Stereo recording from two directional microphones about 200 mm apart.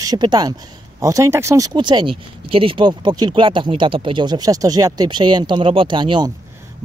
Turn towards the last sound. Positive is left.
turn(degrees=-25)  # may be behind; listen again after turning